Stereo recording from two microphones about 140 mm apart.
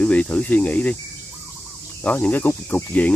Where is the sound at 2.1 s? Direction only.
10° left (ahead or behind).